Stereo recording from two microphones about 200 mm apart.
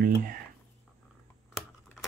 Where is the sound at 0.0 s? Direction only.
45° right (ahead or behind).